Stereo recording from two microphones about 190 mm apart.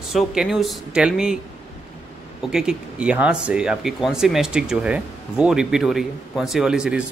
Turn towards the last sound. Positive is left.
turn(degrees=-5)  # may be behind; listen again after turning